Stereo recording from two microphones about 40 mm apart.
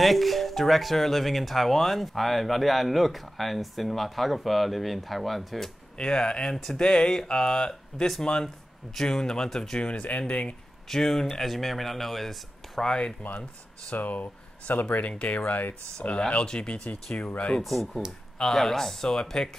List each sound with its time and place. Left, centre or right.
0.0 s speech: centre
5.9 s speech: centre
9.8 s speech: left
10.9 s speech: centre
13.2 s speech: left
16.2 s speech: left
17.6 s speech: centre